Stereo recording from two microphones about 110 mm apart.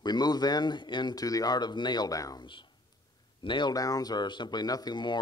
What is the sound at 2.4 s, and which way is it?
Speech, 45° left (ahead or behind).